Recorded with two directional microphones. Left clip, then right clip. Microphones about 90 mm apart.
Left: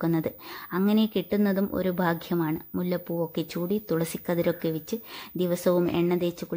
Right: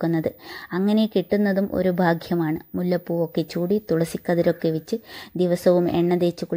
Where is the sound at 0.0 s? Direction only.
20° right (ahead or behind).